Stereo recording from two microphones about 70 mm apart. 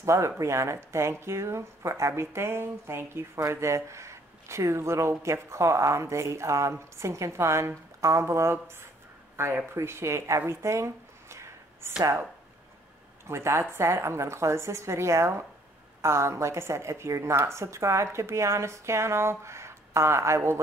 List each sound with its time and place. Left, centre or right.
0.0 s speech: right
13.3 s speech: right